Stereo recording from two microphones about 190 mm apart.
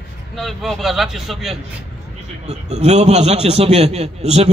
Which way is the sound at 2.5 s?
35° right (ahead or behind).